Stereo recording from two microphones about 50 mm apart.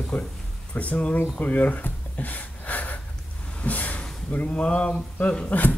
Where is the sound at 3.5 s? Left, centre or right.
Left.